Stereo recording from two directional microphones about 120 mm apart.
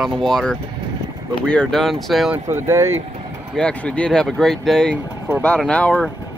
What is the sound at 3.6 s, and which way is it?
Speech, 10° left (ahead or behind).